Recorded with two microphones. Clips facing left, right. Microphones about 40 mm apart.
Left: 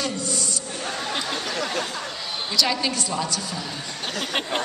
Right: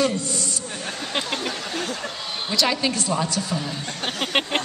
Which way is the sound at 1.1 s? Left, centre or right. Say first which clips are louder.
Right 6 dB; right.